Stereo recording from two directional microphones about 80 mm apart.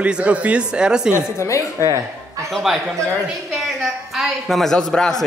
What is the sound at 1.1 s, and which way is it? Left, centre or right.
Speech, left.